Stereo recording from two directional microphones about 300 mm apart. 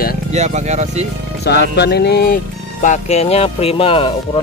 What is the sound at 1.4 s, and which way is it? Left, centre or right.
Speech, left.